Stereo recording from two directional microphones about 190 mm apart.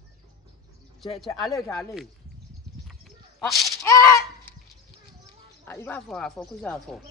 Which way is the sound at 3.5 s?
Centre (ahead or behind).